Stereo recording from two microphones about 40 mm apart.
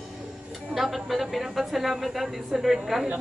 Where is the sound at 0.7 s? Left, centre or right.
Centre.